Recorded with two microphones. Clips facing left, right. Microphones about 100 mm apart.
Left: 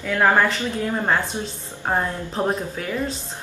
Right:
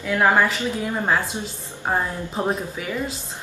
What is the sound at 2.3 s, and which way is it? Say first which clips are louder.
Speech: left 1 dB; 5° right (ahead or behind).